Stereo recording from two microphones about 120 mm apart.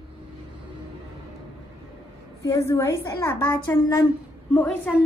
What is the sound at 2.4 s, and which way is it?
A woman's voice, 25° left (ahead or behind).